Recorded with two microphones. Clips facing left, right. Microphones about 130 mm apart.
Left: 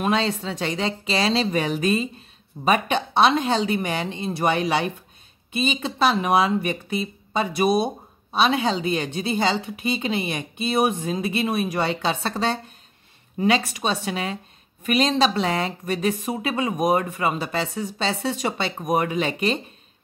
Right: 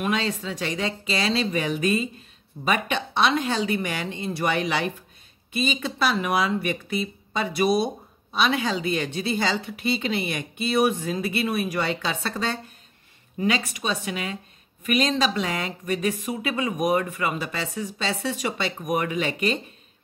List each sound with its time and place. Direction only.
0.0 s a woman's voice: 30° left (ahead or behind)